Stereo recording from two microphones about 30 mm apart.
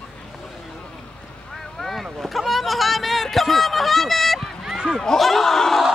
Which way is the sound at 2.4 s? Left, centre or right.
Centre.